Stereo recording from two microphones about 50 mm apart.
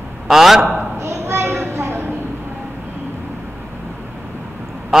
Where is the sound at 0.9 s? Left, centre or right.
Right.